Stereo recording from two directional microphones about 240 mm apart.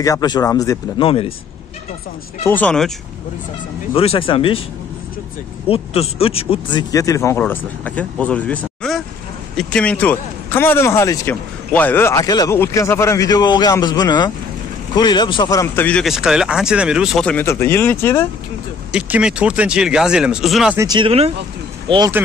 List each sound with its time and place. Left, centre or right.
0.0 s speech: centre
2.4 s speech: centre
3.9 s speech: left
5.7 s speech: left
18.9 s speech: centre
20.8 s speech: centre